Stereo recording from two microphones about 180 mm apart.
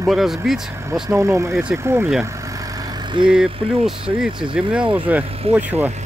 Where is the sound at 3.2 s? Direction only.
5° right (ahead or behind).